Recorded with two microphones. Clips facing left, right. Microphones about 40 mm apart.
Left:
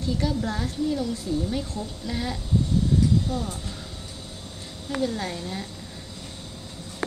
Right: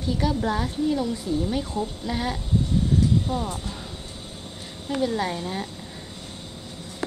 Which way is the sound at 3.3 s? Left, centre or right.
Right.